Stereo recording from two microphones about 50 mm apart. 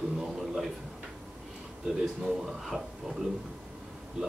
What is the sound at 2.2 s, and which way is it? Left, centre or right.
Speech, centre.